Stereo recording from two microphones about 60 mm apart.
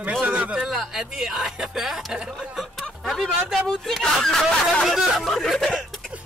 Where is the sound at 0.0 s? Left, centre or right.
Right.